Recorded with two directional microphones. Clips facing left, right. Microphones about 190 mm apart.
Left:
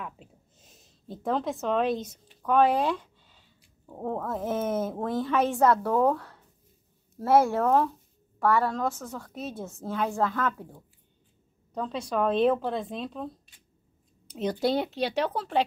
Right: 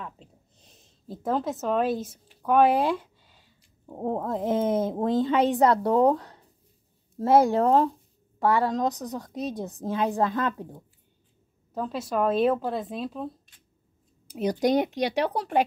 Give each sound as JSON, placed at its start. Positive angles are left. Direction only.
{"t": 0.0, "sound": "a woman's voice", "side_deg": 5}
{"t": 11.7, "sound": "a woman's voice", "side_deg": -5}